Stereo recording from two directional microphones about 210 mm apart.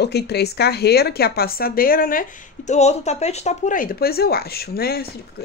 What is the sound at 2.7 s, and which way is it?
Speech, 30° left (ahead or behind).